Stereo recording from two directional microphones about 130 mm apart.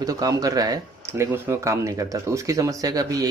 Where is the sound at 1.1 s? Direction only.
20° right (ahead or behind).